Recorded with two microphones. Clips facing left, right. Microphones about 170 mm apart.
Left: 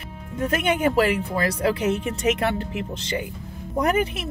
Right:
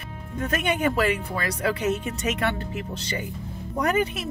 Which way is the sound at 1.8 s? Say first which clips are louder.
Left 2 dB; 20° left (ahead or behind).